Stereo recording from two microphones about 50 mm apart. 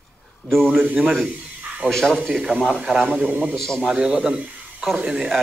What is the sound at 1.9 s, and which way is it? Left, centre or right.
Speech, centre.